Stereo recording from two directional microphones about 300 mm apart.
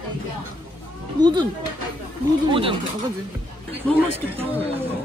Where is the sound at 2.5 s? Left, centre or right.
Centre.